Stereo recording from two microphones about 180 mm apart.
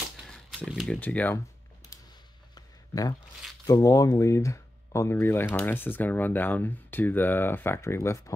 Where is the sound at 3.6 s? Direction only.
20° left (ahead or behind).